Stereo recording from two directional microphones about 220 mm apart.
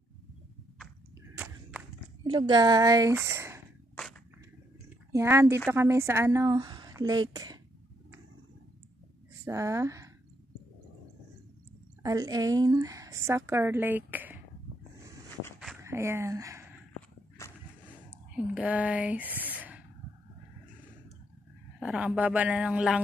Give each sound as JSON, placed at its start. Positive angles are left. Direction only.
{"t": 1.3, "sound": "a sound", "side_deg": -5}
{"t": 2.2, "sound": "a woman's voice", "side_deg": -20}
{"t": 5.1, "sound": "a woman's voice", "side_deg": -10}
{"t": 9.4, "sound": "speech", "side_deg": -15}
{"t": 12.0, "sound": "a woman's voice", "side_deg": -15}
{"t": 15.8, "sound": "speech", "side_deg": -10}
{"t": 17.4, "sound": "whip", "side_deg": 10}
{"t": 18.3, "sound": "speech", "side_deg": -5}
{"t": 21.7, "sound": "a woman's voice", "side_deg": -5}